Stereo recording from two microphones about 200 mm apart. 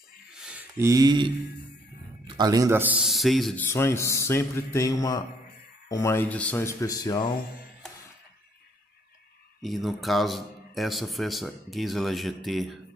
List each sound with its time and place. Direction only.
0.3 s a sound: 5° right (ahead or behind); by 1.3 s 20° right (ahead or behind)
2.2 s a man's voice: 20° right (ahead or behind); by 3.6 s centre (ahead or behind)
3.6 s speech: 15° left (ahead or behind)
9.6 s a man's voice: centre (ahead or behind)